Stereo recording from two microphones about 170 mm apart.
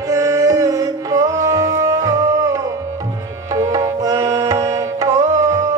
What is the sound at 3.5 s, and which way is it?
Tabla, 20° right (ahead or behind).